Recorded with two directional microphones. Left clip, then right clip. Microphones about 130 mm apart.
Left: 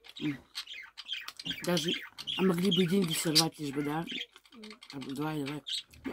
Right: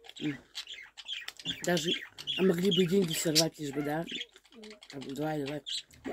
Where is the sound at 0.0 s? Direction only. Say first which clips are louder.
Even; 25° left (ahead or behind).